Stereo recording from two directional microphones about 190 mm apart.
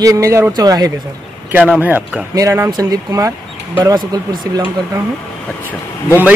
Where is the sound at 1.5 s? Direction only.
5° right (ahead or behind).